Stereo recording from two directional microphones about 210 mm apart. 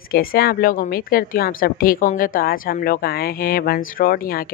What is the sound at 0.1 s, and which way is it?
Speech, 45° left (ahead or behind).